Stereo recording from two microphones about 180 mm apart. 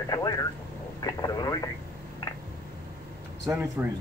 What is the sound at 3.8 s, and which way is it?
Speech, 15° right (ahead or behind).